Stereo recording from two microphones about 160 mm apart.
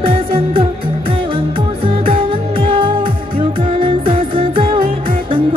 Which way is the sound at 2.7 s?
35° right (ahead or behind).